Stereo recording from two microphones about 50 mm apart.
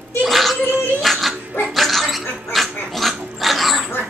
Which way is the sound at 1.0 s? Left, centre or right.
Centre.